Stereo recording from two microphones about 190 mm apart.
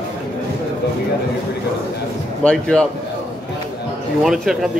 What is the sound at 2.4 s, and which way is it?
Speech, 5° left (ahead or behind).